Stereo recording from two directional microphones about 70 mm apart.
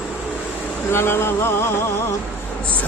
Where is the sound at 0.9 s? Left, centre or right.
Left.